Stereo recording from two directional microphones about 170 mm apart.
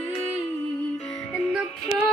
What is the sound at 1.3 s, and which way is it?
Music, centre (ahead or behind).